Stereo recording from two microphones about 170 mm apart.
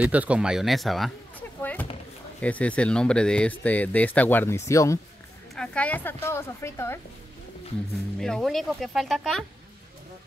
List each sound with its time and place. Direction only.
0.0 s speech: 10° right (ahead or behind)
1.6 s a sound: 10° left (ahead or behind)
2.4 s speech: 10° left (ahead or behind)
5.5 s speech: 5° left (ahead or behind)
8.2 s speech: centre (ahead or behind)